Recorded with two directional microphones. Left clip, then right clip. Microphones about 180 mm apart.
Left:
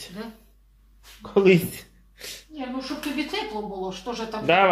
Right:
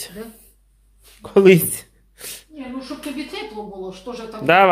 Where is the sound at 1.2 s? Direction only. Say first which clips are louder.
Right 6 dB; 60° right (ahead or behind).